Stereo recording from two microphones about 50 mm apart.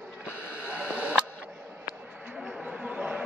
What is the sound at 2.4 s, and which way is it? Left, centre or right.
Chatter, centre.